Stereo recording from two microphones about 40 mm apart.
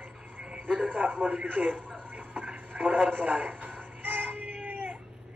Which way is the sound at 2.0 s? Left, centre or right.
Right.